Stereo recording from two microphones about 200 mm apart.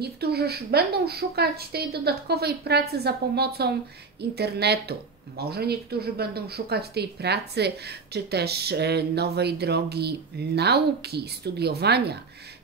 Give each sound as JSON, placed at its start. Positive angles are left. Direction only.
{"t": 0.0, "sound": "a woman's voice", "side_deg": -50}